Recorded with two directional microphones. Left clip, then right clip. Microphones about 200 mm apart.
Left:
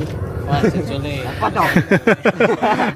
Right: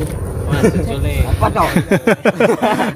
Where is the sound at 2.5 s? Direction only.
50° right (ahead or behind).